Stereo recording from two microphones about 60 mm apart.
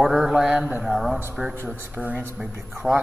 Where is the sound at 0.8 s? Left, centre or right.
Centre.